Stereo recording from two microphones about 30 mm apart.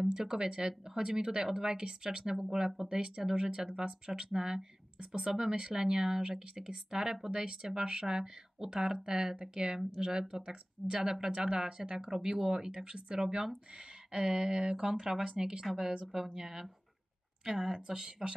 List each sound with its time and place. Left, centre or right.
0.1 s speech: centre
4.9 s speech: right
5.3 s speech: centre
12.1 s speech: centre
15.2 s speech: right
16.3 s speech: centre